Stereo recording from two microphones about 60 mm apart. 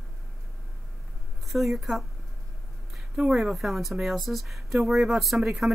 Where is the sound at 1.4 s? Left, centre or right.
Centre.